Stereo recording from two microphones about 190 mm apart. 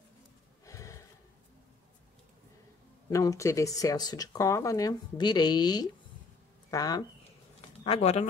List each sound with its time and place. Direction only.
0.7 s a sound: 15° left (ahead or behind)
3.1 s speech: 15° left (ahead or behind)
7.8 s speech: 30° left (ahead or behind)